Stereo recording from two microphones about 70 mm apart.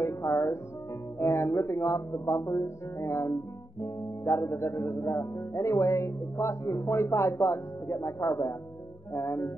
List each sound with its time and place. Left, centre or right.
0.0 s music: left
1.2 s speech: left
3.8 s music: left
9.1 s speech: left